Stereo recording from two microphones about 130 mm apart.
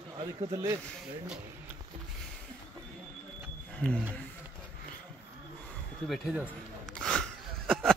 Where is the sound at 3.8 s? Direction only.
10° left (ahead or behind).